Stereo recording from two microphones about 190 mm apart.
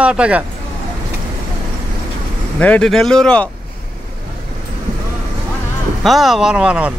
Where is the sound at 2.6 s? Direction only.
5° left (ahead or behind).